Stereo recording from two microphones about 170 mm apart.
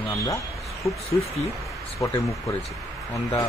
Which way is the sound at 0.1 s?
20° left (ahead or behind).